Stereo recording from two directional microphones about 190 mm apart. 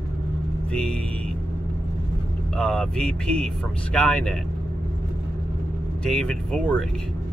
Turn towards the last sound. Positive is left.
turn(degrees=5)  # may be behind; listen again after turning